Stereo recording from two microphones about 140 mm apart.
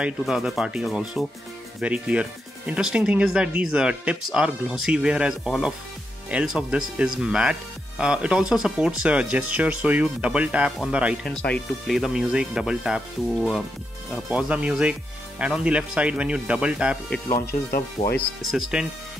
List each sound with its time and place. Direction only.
0.0 s speech: 5° right (ahead or behind)
11.2 s speech: 10° left (ahead or behind)
11.9 s speech: 5° right (ahead or behind)
17.6 s speech: 90° left
18.5 s speech: 5° right (ahead or behind)